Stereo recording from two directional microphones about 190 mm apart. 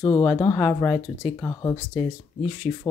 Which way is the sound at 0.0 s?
15° left (ahead or behind).